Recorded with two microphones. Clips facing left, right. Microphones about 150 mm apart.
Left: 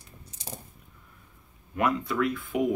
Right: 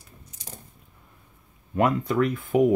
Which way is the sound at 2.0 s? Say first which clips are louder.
Right 4 dB; 45° right (ahead or behind).